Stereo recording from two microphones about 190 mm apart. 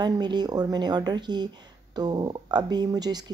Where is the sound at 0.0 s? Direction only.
20° right (ahead or behind).